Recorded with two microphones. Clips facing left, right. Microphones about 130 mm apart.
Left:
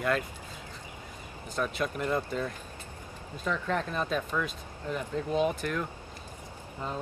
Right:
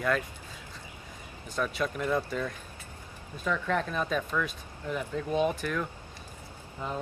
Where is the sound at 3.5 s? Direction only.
5° left (ahead or behind).